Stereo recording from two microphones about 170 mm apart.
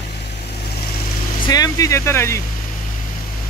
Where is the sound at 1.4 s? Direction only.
20° left (ahead or behind).